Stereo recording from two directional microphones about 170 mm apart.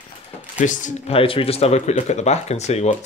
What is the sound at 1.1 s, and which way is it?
Speech, 35° left (ahead or behind).